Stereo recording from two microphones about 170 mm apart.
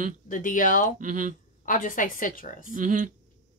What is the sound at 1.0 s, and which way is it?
Speech, 50° right (ahead or behind).